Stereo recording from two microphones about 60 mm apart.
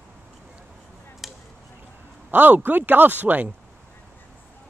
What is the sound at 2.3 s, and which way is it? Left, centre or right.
Speech, right.